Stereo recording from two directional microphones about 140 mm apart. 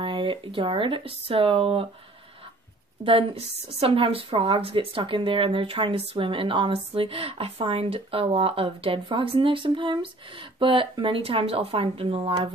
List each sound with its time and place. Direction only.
0.0 s a woman's voice: 35° right (ahead or behind)
3.0 s a woman's voice: 40° right (ahead or behind)